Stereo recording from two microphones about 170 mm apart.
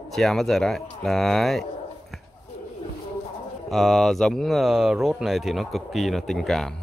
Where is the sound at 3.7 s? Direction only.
Centre (ahead or behind).